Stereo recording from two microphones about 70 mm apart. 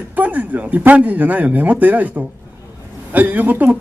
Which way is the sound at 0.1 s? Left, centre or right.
Right.